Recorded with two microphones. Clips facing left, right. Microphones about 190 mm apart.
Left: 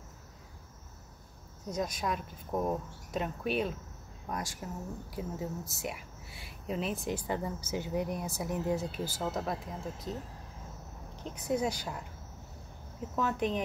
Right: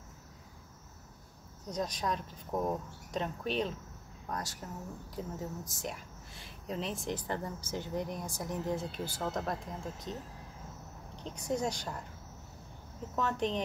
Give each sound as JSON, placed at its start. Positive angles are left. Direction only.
{"t": 1.7, "sound": "a woman's voice", "side_deg": 10}
{"t": 11.2, "sound": "speech", "side_deg": 5}
{"t": 13.1, "sound": "a woman's voice", "side_deg": 5}